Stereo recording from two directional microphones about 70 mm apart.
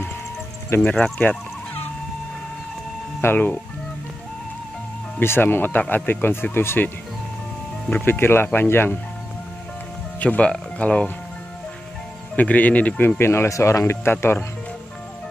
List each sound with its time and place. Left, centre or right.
0.7 s speech: left
0.9 s speech: centre
3.2 s speech: left
5.2 s speech: left
7.9 s speech: left
10.2 s speech: left
12.4 s speech: left
13.2 s speech: left